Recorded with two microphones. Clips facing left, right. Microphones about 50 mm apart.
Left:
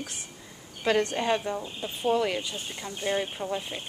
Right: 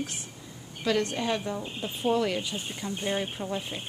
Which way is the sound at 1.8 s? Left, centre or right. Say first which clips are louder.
Even; centre.